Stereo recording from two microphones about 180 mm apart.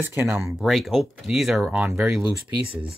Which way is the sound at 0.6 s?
Centre (ahead or behind).